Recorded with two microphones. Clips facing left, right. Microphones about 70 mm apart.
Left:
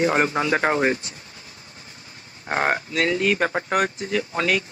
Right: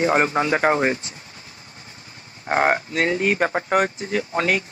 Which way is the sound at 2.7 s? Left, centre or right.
Right.